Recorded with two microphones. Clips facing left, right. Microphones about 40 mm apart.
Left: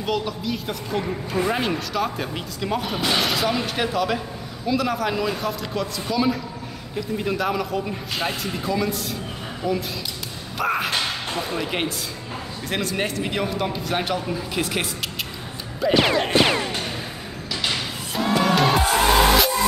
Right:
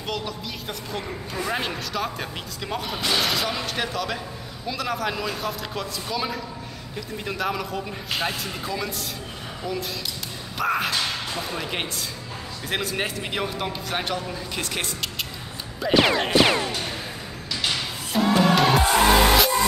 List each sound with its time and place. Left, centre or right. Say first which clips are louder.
0.0 s a man's voice: left 5 dB; centre
10.6 s whip: left 1 dB; centre
11.5 s a man's voice: left 4 dB; centre
17.6 s music: left 1 dB; centre